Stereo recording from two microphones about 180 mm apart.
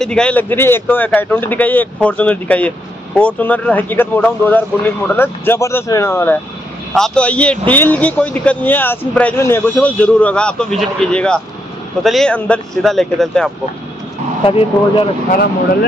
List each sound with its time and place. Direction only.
0.0 s a man's voice: 5° left (ahead or behind)
14.4 s speech: 30° left (ahead or behind)